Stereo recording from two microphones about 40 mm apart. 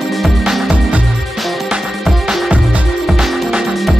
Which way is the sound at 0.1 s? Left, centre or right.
Centre.